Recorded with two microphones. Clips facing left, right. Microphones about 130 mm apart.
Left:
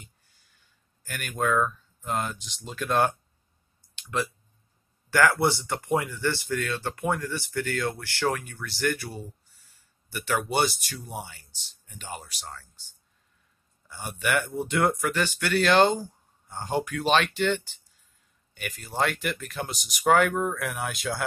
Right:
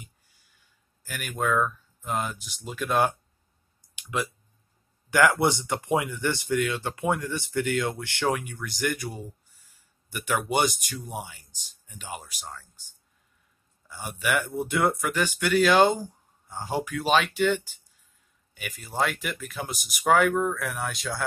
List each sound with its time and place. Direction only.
1.0 s speech: 5° right (ahead or behind)
5.1 s speech: 15° right (ahead or behind)
13.8 s speech: 5° right (ahead or behind)